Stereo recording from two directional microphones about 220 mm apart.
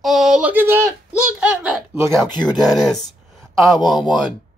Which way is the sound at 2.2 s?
20° left (ahead or behind).